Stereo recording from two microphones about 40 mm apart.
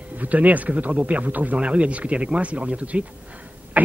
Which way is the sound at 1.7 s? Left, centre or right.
Right.